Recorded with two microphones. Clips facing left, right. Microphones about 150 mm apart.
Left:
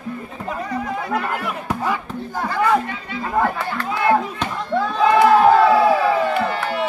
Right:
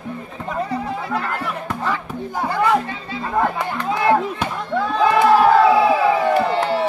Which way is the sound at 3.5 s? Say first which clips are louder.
Right 2 dB; 15° right (ahead or behind).